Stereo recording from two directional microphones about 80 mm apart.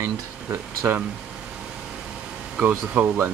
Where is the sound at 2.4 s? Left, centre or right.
Centre.